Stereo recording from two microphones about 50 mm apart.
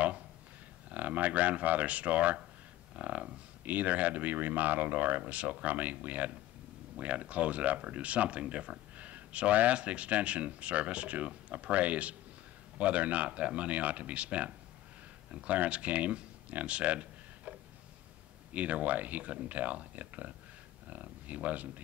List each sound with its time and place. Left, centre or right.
0.8 s speech: right
16.6 s a sound: right
18.5 s speech: right